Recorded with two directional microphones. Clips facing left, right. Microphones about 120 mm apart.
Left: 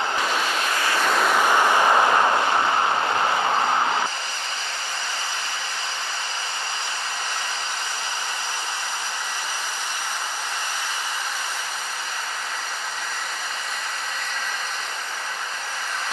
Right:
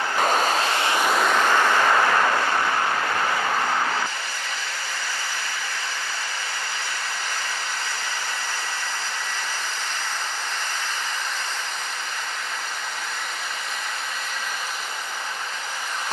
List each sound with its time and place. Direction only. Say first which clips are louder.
0.2 s a sound: right 4 dB; 45° right (ahead or behind)
0.7 s waves: right 1 dB; 20° right (ahead or behind)
1.0 s vehicle: left 2 dB; centre (ahead or behind); by 4.0 s 25° left (ahead or behind)